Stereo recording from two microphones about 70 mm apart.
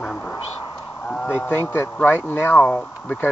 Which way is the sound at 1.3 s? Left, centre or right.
Left.